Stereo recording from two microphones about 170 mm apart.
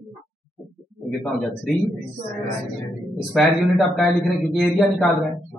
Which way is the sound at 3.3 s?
Centre (ahead or behind).